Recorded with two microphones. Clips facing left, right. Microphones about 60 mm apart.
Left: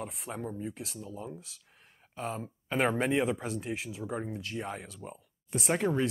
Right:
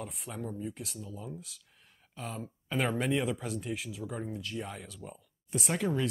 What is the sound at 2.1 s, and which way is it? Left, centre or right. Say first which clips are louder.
Speech: left 4 dB; left.